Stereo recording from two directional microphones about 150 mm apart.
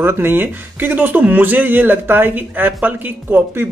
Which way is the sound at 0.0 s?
15° right (ahead or behind).